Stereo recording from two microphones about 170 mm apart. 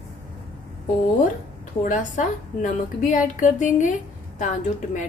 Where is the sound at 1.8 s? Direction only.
50° left (ahead or behind).